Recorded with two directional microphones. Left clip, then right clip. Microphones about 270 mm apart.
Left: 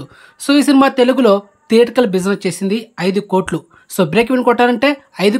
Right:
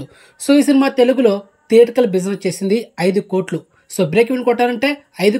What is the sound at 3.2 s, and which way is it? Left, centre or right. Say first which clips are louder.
Speech: left 2 dB; left.